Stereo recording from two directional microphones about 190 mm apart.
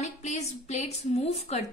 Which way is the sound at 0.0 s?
35° left (ahead or behind).